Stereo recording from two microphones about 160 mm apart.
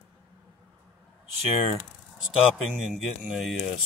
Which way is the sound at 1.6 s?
40° left (ahead or behind).